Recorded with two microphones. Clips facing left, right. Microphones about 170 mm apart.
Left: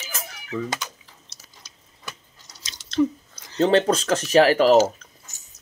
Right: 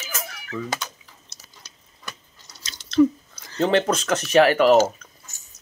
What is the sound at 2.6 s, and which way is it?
Chewing, 20° left (ahead or behind).